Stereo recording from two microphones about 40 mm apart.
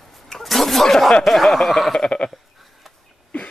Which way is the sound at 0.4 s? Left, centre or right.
Centre.